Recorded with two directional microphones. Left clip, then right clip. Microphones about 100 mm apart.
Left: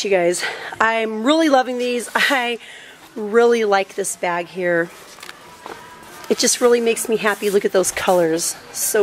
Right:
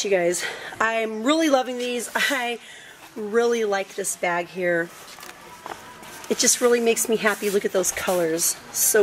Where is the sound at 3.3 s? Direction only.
20° left (ahead or behind).